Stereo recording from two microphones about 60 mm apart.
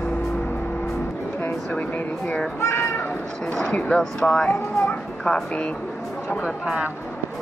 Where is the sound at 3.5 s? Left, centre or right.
Centre.